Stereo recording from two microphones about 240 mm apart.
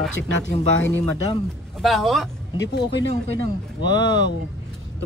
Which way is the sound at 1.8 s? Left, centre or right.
Centre.